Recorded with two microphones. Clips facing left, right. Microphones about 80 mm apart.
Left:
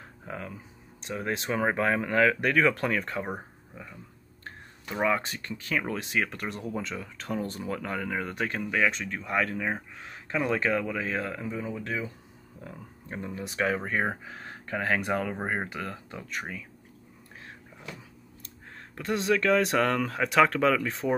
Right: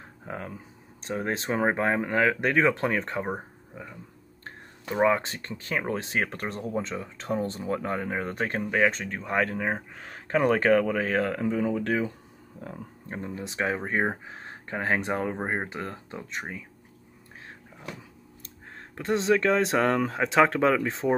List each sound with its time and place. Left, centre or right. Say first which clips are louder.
0.3 s speech: right 2 dB; right
5.0 s speech: right 4 dB; right
12.6 s speech: right 3 dB; right
18.8 s speech: right 3 dB; right